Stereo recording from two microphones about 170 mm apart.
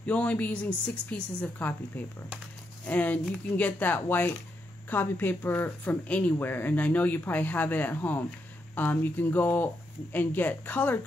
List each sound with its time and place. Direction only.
0.0 s speech: 10° left (ahead or behind)
2.9 s speech: 10° left (ahead or behind)